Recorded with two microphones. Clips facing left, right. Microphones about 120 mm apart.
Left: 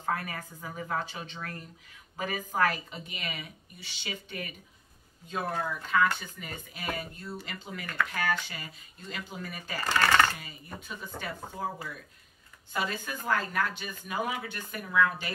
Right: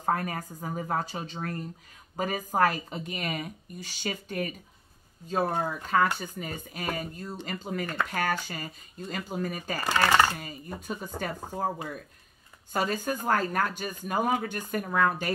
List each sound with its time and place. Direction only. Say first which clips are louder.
0.0 s speech: right 4 dB; 40° right (ahead or behind)
5.9 s speech: right 1 dB; 40° right (ahead or behind)
9.8 s speech: right 2 dB; 15° right (ahead or behind)
10.4 s speech: right 6 dB; 45° right (ahead or behind)
12.7 s speech: right 5 dB; 40° right (ahead or behind)